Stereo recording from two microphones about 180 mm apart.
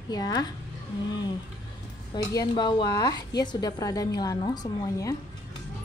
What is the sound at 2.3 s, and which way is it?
A woman's voice, 25° left (ahead or behind).